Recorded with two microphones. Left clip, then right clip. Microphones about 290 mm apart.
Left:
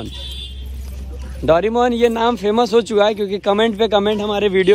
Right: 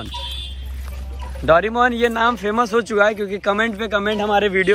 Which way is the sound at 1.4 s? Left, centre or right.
Centre.